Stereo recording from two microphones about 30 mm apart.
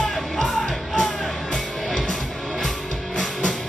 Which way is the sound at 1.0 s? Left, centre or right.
Left.